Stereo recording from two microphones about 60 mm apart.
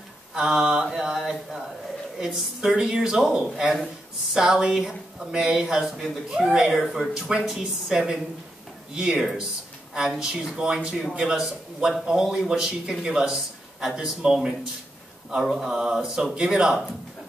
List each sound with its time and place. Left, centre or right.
0.3 s a man's voice: centre